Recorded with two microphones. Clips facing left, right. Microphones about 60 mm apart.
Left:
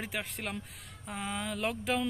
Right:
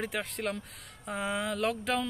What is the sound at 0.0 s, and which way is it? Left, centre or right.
Speech, centre.